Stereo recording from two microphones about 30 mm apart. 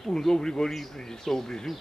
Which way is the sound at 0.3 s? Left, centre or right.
Left.